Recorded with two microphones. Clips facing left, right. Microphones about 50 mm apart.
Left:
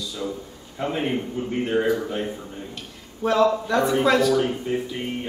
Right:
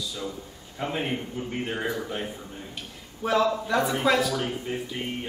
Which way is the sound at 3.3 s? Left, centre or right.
Centre.